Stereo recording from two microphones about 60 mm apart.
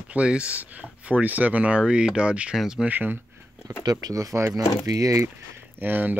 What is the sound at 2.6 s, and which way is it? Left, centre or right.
Speech, centre.